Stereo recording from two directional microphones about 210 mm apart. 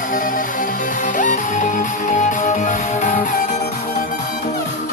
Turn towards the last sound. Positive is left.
turn(degrees=35)  # may be behind; listen again after turning